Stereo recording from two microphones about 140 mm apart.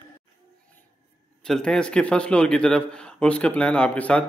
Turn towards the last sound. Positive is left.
turn(degrees=10)  # may be behind; listen again after turning